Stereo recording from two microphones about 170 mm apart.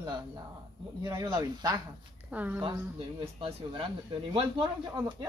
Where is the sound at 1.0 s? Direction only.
20° right (ahead or behind).